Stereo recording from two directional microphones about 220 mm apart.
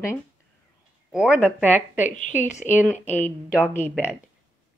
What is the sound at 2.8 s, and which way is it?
Speech, 10° left (ahead or behind).